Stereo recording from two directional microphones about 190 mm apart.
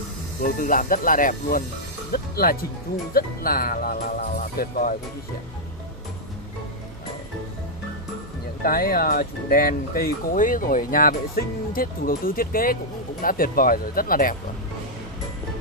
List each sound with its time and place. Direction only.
0.6 s speech: 45° left (ahead or behind)
8.6 s speech: 50° left (ahead or behind)